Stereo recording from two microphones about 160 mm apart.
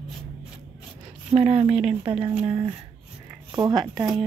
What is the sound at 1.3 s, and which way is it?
Speech, 35° right (ahead or behind).